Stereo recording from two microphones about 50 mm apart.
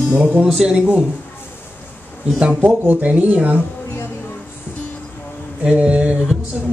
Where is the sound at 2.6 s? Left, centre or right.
Right.